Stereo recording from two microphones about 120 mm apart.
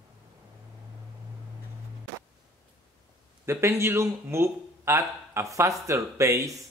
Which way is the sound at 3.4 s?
20° right (ahead or behind).